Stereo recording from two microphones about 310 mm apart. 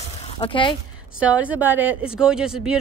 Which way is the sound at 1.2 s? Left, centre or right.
Centre.